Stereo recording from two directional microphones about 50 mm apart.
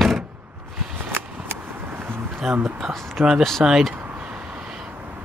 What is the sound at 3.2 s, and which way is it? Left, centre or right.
Speech, right.